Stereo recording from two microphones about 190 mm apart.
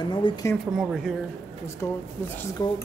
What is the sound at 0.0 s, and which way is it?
Speech, 20° left (ahead or behind).